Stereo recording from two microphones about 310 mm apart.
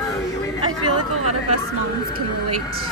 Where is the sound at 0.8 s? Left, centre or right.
Right.